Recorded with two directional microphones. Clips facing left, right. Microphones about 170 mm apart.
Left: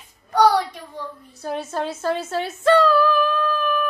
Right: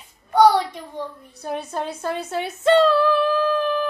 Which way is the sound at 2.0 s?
15° right (ahead or behind).